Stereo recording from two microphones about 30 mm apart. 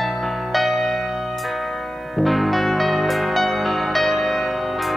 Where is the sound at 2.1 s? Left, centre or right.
Centre.